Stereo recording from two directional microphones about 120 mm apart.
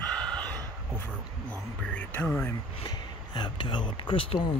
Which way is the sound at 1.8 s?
10° left (ahead or behind).